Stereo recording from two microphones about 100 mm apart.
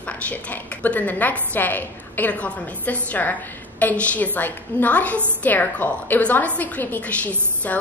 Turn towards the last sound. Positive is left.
turn(degrees=15)  # may be behind; listen again after turning